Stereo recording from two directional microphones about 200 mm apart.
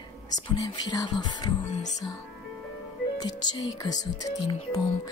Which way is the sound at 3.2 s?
20° left (ahead or behind).